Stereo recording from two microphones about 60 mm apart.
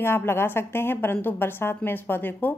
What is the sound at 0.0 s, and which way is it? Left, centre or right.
A woman's voice, left.